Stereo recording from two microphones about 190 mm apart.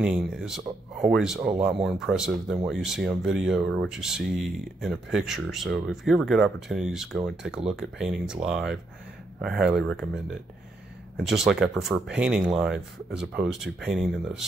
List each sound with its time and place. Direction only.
0.0 s speech: 5° right (ahead or behind)